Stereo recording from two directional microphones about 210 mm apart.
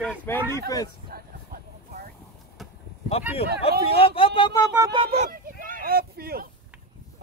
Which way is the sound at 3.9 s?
25° left (ahead or behind).